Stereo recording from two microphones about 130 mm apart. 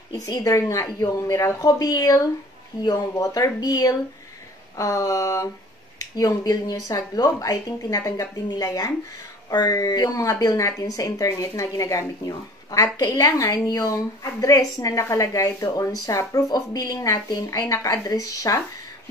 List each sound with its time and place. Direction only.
0.3 s a woman's voice: 25° left (ahead or behind)